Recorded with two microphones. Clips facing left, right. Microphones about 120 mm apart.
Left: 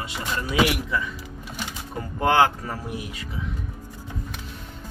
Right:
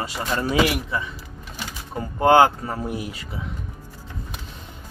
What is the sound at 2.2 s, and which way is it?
Speech, 30° right (ahead or behind).